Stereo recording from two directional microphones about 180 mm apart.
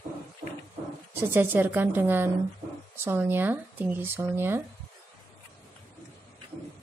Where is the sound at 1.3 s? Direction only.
10° right (ahead or behind).